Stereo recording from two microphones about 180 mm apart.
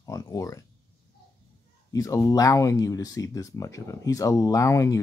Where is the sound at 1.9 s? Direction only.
20° left (ahead or behind).